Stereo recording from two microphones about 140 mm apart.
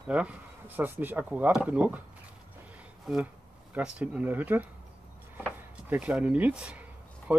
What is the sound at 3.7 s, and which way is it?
Speech, 10° right (ahead or behind).